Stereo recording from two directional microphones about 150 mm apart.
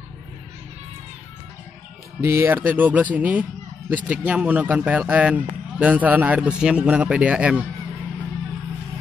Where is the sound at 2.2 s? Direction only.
15° right (ahead or behind).